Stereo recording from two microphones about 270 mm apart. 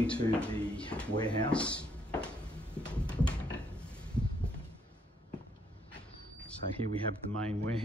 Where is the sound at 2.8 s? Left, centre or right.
Centre.